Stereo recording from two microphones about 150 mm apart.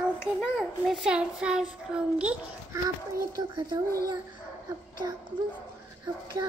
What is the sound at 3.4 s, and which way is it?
Child singing, 25° right (ahead or behind).